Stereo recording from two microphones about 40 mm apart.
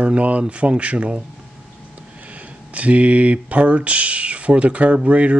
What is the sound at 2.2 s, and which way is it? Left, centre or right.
Speech, right.